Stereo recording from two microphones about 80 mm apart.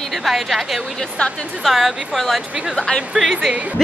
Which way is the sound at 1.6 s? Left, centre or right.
Centre.